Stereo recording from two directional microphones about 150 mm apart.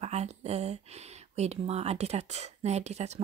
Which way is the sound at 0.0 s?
45° right (ahead or behind).